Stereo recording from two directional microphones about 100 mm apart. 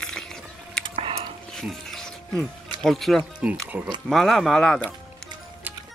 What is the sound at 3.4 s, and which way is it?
Speech, 15° right (ahead or behind).